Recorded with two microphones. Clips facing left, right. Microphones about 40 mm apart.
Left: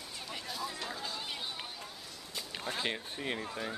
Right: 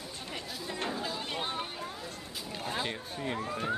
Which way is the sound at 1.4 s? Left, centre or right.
Right.